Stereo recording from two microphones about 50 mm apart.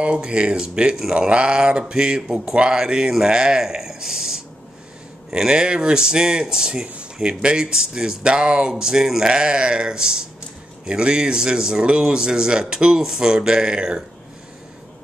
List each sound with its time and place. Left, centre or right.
0.0 s speech: right